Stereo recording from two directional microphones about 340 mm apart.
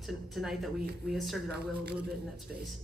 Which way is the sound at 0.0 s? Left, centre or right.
Centre.